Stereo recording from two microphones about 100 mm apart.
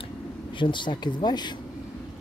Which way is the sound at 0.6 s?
55° left (ahead or behind).